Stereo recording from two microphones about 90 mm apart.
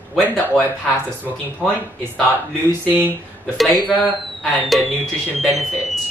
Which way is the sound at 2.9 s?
20° right (ahead or behind).